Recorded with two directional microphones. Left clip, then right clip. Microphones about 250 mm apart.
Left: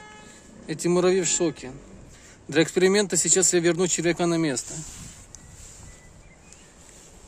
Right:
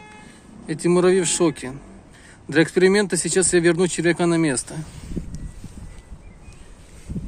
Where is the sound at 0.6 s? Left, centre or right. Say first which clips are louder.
Right 4 dB; centre.